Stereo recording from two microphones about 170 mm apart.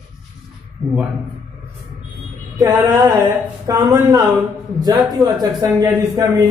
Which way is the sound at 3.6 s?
20° right (ahead or behind).